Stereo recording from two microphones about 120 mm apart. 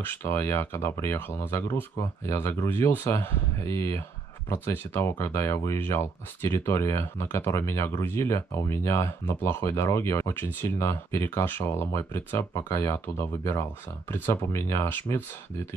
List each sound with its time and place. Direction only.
0.0 s speech: 20° left (ahead or behind)